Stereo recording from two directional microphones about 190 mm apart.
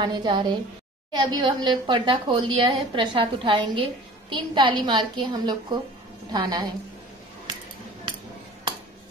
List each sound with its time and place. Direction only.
0.0 s a woman's voice: 20° right (ahead or behind)